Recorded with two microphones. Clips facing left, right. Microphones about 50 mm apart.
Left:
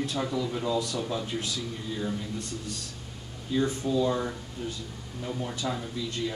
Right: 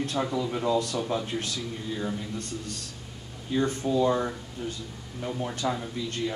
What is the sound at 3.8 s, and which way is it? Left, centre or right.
Speech, right.